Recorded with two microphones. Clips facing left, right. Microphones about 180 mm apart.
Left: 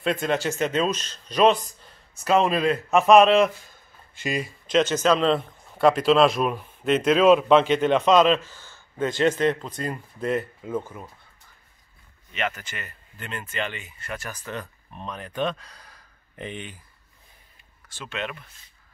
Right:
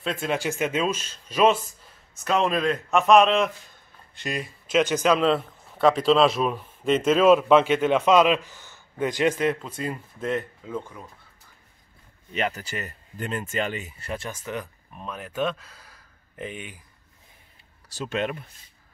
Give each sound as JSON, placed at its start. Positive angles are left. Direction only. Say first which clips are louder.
{"t": 0.0, "sound": "a man's voice", "louder": "left 3 dB", "side_deg": -5}
{"t": 7.1, "sound": "a man's voice", "louder": "even", "side_deg": -5}
{"t": 12.3, "sound": "speech", "louder": "right 2 dB", "side_deg": -35}
{"t": 17.8, "sound": "speech", "louder": "right 5 dB", "side_deg": -40}